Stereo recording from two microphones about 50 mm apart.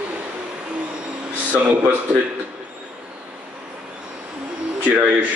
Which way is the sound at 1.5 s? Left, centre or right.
Right.